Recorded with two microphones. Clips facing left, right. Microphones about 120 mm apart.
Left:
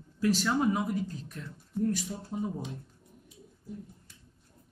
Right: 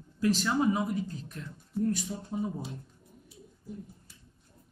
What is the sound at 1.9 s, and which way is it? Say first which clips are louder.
Speech: right 1 dB; centre (ahead or behind).